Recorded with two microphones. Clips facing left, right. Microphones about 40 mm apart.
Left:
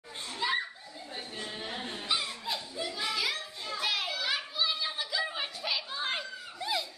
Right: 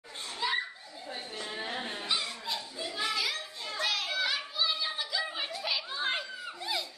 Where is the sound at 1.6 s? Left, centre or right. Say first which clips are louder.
Right 4 dB; centre.